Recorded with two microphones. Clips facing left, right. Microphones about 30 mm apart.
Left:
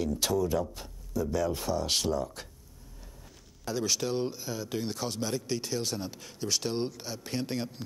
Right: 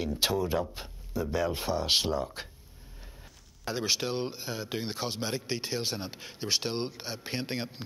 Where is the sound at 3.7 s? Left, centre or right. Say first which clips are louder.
Even; right.